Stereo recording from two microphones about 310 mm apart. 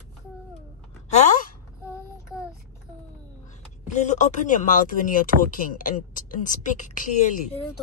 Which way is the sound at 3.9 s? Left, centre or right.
Left.